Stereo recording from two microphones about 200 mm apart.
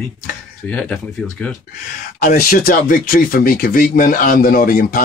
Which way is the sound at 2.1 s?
50° left (ahead or behind).